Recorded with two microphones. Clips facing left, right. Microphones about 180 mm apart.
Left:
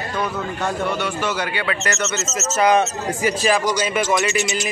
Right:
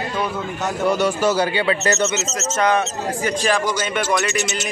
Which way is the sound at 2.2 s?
Centre (ahead or behind).